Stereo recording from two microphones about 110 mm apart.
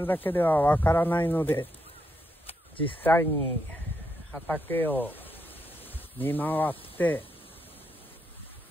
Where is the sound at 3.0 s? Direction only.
15° left (ahead or behind).